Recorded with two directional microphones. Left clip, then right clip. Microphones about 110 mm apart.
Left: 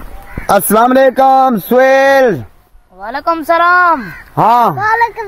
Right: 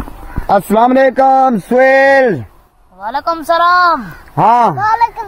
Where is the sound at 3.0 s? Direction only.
30° right (ahead or behind).